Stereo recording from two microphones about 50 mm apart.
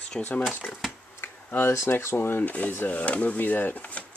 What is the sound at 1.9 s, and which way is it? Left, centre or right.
Speech, left.